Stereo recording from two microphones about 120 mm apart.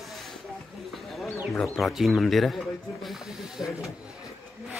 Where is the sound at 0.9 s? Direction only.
Centre (ahead or behind).